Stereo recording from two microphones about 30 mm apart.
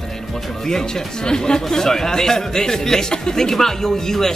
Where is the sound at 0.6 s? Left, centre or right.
Centre.